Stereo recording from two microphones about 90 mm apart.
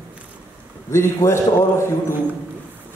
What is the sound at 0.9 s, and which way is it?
A man's voice, 30° left (ahead or behind).